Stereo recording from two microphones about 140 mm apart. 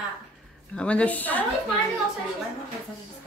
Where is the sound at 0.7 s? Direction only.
10° left (ahead or behind).